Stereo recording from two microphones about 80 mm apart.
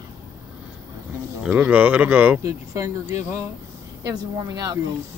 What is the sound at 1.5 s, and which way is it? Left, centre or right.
Speech, right.